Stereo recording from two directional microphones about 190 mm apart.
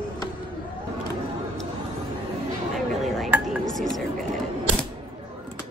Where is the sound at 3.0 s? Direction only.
5° right (ahead or behind).